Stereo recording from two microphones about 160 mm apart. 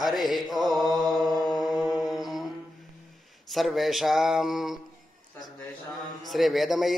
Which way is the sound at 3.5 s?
Centre (ahead or behind).